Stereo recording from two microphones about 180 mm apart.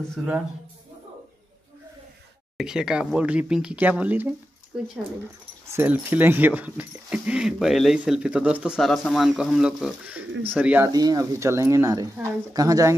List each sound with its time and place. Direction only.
0.1 s speech: 5° right (ahead or behind)
2.5 s speech: 5° right (ahead or behind)
5.7 s speech: 10° right (ahead or behind)
10.9 s speech: 20° right (ahead or behind)